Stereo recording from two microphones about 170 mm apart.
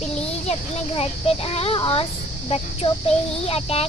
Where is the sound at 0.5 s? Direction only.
40° left (ahead or behind).